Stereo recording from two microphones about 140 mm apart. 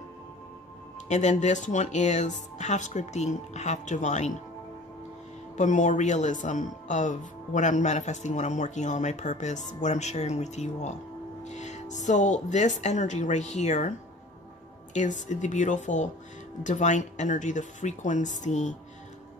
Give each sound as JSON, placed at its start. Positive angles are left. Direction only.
{"t": 1.0, "sound": "speech", "side_deg": 60}
{"t": 5.6, "sound": "speech", "side_deg": 60}
{"t": 15.0, "sound": "speech", "side_deg": 60}